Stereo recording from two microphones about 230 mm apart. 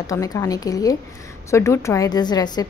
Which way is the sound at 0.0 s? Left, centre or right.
Centre.